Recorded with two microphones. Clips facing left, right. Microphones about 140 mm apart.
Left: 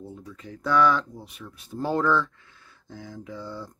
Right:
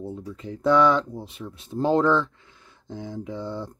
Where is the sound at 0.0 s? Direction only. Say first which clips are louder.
Right 6 dB; 25° right (ahead or behind).